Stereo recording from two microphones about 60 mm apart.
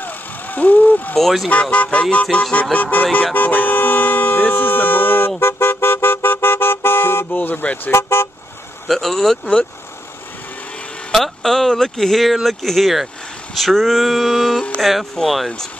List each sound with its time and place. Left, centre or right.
0.0 s vehicle: left
1.1 s speech: centre
1.5 s speech: left
5.4 s toot: left
7.9 s speech: left
8.8 s speech: centre
11.1 s speech: centre